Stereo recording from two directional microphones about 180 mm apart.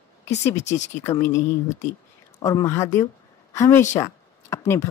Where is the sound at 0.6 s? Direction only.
40° left (ahead or behind).